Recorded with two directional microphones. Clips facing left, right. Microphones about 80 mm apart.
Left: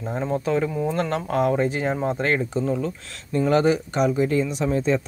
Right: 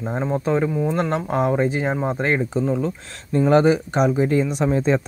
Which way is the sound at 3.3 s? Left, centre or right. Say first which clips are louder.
Right 3 dB; right.